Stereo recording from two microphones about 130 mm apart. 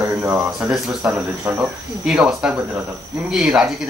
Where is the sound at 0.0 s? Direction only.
15° right (ahead or behind).